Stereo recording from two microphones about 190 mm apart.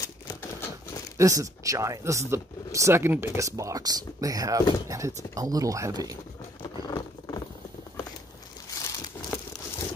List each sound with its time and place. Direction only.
0.0 s typewriter: 15° left (ahead or behind)
1.1 s speech: 15° right (ahead or behind)
6.6 s patter: 20° left (ahead or behind)
8.6 s crumpling: 20° left (ahead or behind)